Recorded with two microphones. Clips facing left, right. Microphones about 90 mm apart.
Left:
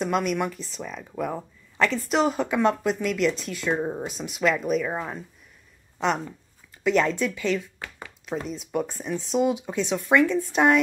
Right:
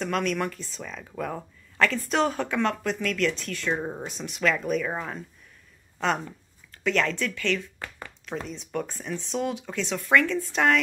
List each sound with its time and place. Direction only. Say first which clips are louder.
0.0 s a woman's voice: left 2 dB; 15° left (ahead or behind)
2.6 s speech: left 5 dB; 20° left (ahead or behind)
6.8 s speech: left 4 dB; 15° left (ahead or behind)